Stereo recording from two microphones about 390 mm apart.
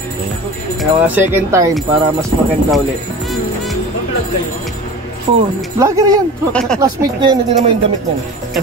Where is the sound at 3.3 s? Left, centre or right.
Centre.